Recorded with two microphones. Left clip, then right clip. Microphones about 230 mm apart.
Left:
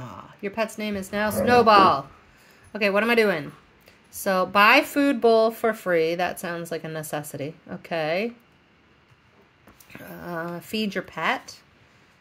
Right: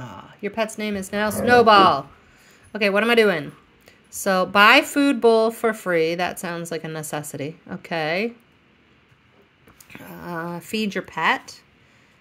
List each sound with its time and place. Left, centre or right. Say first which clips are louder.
0.0 s a sound: right 2 dB; centre
0.7 s speech: right 2 dB; centre
9.8 s speech: right 1 dB; centre